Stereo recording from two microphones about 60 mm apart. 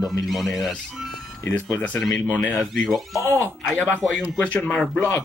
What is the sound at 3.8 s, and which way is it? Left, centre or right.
Speech, left.